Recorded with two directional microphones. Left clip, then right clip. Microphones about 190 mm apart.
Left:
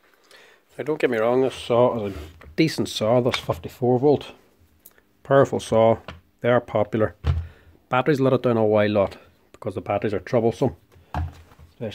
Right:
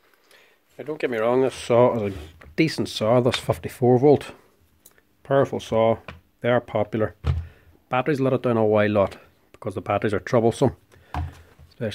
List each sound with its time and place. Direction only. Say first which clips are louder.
0.3 s a sound: left 5 dB; 15° left (ahead or behind)
0.7 s speech: left 6 dB; 30° left (ahead or behind)
1.2 s speech: right 2 dB; 5° right (ahead or behind)
1.5 s speech: right 1 dB; 20° right (ahead or behind)
2.1 s speech: left 1 dB; 5° right (ahead or behind)
3.3 s speech: right 1 dB; 30° right (ahead or behind)
5.2 s speech: left 3 dB; 5° left (ahead or behind); by 10.7 s 20° right (ahead or behind)
11.8 s speech: right 3 dB; 30° right (ahead or behind)